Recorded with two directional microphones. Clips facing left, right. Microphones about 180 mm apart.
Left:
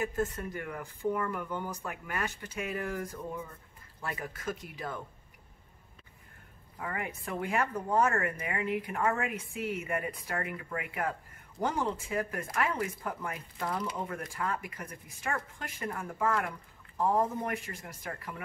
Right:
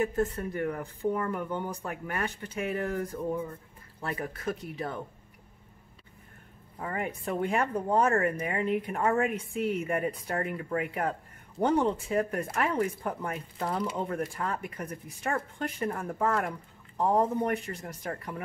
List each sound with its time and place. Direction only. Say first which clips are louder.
0.0 s speech: right 4 dB; 30° right (ahead or behind)
6.8 s speech: right 4 dB; 30° right (ahead or behind)